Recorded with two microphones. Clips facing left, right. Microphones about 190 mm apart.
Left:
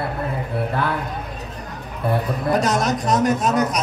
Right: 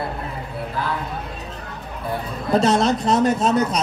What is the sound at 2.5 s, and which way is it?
A woman's voice, 25° right (ahead or behind).